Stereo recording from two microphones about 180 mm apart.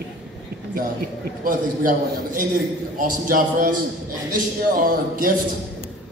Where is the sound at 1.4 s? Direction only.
50° right (ahead or behind).